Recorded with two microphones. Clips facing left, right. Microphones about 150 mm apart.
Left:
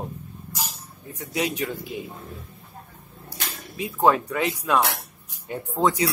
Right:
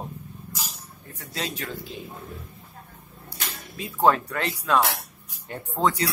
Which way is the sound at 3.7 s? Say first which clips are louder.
Left 1 dB; 15° left (ahead or behind).